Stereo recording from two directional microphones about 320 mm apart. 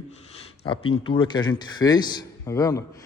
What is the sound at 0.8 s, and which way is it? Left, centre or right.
Speech, left.